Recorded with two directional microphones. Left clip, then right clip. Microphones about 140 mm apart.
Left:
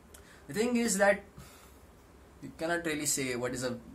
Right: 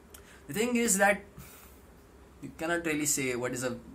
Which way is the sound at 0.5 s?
20° left (ahead or behind).